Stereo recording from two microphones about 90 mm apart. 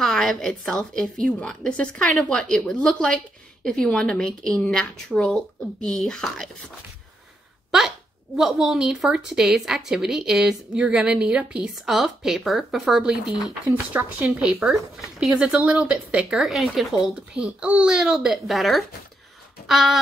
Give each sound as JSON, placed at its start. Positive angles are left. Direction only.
{"t": 0.0, "sound": "a woman's voice", "side_deg": 5}
{"t": 8.4, "sound": "a woman's voice", "side_deg": -5}
{"t": 13.9, "sound": "speech", "side_deg": -30}
{"t": 14.7, "sound": "a woman's voice", "side_deg": -5}